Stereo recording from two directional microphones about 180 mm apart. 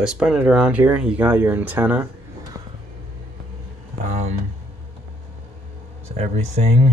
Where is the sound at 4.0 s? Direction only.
40° right (ahead or behind).